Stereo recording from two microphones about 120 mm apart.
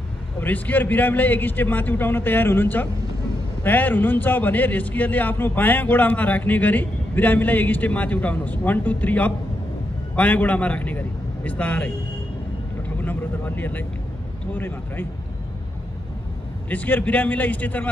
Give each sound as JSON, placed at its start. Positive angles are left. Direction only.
{"t": 0.4, "sound": "a man's voice", "side_deg": 15}
{"t": 16.6, "sound": "a man's voice", "side_deg": 15}